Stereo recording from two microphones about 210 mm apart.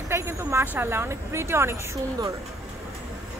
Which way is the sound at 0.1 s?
10° right (ahead or behind).